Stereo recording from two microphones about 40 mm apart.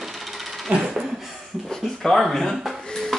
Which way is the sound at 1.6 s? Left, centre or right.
Centre.